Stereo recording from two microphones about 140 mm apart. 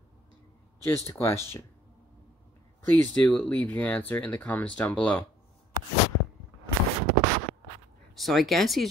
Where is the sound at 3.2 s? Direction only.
10° left (ahead or behind).